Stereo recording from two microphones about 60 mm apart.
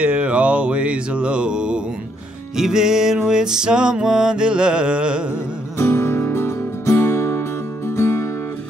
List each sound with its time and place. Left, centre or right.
0.0 s mantra: centre
2.5 s music: centre
5.8 s music: left